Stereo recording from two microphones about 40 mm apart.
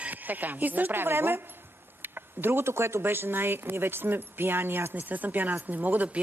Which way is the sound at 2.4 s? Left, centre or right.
Right.